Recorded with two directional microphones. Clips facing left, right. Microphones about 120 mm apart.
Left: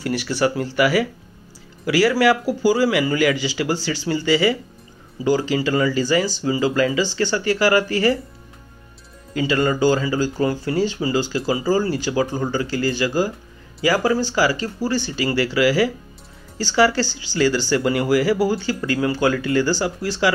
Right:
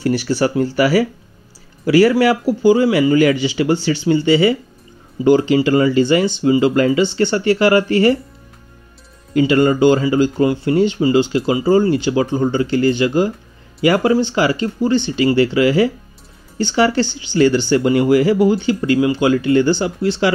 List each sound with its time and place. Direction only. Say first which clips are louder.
0.0 s speech: right 4 dB; 30° right (ahead or behind)
9.5 s speech: right 5 dB; 25° right (ahead or behind)